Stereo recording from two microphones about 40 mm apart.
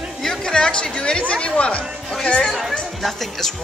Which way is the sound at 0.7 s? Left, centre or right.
Left.